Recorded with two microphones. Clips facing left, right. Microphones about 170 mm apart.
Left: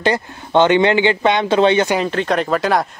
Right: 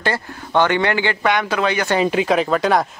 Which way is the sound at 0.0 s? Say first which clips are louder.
Left 4 dB; 20° left (ahead or behind).